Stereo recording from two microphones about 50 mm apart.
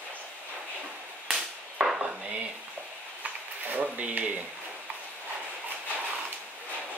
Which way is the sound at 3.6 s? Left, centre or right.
Right.